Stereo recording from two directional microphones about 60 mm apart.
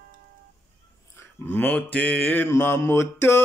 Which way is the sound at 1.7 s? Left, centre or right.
Left.